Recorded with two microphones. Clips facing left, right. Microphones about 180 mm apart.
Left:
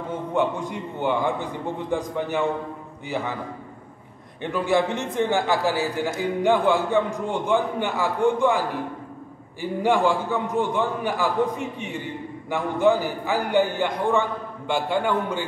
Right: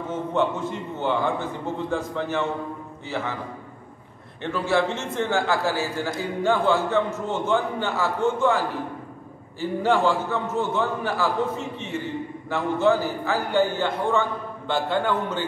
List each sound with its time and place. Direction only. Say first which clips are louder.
0.3 s a man's voice: left 1 dB; 15° left (ahead or behind)
4.4 s a man's voice: left 1 dB; 15° left (ahead or behind)